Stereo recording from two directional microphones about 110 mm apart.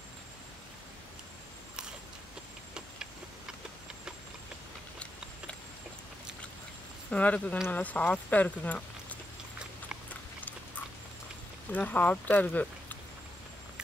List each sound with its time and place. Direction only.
7.1 s speech: 10° left (ahead or behind)
11.7 s speech: 15° left (ahead or behind)